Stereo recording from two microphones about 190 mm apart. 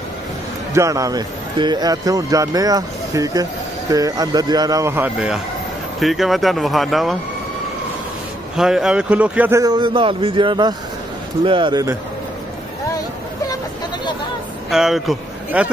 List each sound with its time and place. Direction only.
0.7 s speech: 15° right (ahead or behind); by 7.2 s centre (ahead or behind)
8.5 s a man's voice: centre (ahead or behind); by 12.0 s 20° right (ahead or behind)
14.7 s speech: centre (ahead or behind)